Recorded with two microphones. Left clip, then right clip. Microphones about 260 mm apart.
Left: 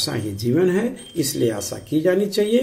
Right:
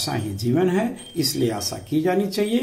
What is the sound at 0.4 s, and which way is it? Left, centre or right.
Speech, centre.